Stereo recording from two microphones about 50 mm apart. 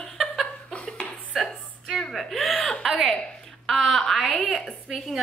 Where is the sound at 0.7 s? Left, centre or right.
Left.